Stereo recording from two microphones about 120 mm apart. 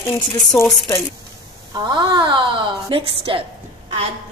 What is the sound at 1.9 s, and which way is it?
A woman's voice, 40° right (ahead or behind).